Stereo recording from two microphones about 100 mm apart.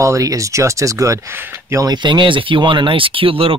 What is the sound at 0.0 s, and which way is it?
Speech, 35° right (ahead or behind).